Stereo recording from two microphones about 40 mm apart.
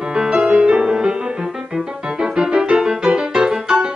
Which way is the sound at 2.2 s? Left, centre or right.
Right.